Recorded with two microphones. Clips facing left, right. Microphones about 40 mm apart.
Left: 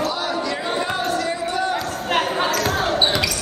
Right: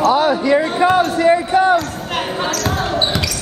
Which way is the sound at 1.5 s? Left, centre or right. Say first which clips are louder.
Right 9 dB; right.